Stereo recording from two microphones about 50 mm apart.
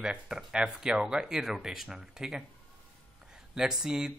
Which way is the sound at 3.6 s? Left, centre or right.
Centre.